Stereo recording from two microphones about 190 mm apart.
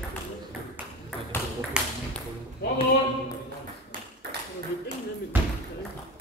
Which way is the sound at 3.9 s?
55° right (ahead or behind).